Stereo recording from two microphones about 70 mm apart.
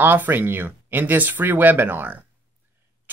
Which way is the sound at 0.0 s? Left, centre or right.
Right.